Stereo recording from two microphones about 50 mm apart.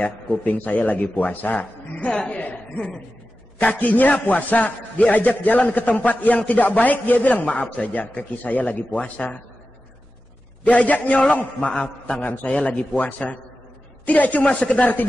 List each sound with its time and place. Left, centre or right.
0.0 s a man's voice: left
2.1 s chuckle: left
3.5 s a man's voice: left
10.6 s a man's voice: left
12.2 s a man's voice: left
12.5 s a man's voice: left